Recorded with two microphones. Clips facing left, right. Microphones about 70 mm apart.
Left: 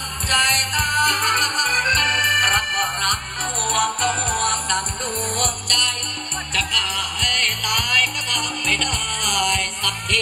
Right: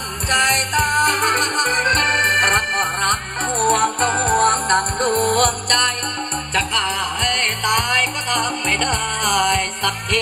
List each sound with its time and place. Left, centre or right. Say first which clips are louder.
0.3 s music: right 3 dB; right
4.1 s music: right 6 dB; right
6.5 s music: right 4 dB; right